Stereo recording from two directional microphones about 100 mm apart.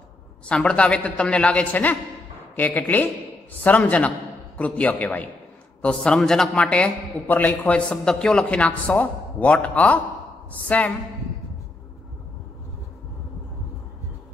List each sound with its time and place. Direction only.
0.5 s a man's voice: 10° left (ahead or behind)